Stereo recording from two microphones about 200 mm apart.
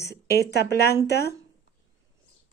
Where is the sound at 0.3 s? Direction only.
55° left (ahead or behind).